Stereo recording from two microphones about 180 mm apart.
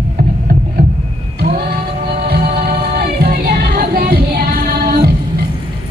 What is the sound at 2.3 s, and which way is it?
Music, 60° right (ahead or behind).